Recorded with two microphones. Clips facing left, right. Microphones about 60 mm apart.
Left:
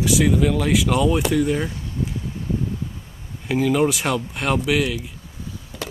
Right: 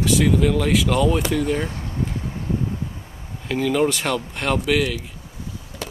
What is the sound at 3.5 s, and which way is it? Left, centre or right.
Speech, centre.